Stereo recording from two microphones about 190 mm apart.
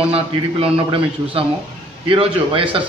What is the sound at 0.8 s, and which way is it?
A man's voice, 30° right (ahead or behind).